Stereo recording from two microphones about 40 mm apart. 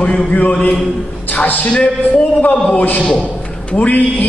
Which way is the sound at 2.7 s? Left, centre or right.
Left.